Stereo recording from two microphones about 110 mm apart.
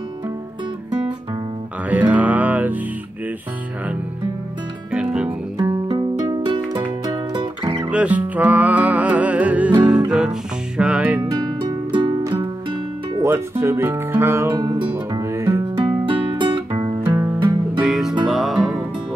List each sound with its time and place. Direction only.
1.9 s music: 15° right (ahead or behind)
4.9 s music: 10° right (ahead or behind)
5.9 s music: 40° right (ahead or behind)
7.9 s music: 15° right (ahead or behind)
11.2 s music: 40° right (ahead or behind)
13.2 s speech: 20° right (ahead or behind)
14.6 s speech: 35° right (ahead or behind)
15.1 s music: 25° right (ahead or behind)
15.8 s music: 50° right (ahead or behind)
17.0 s music: 20° right (ahead or behind)
17.7 s music: 5° right (ahead or behind)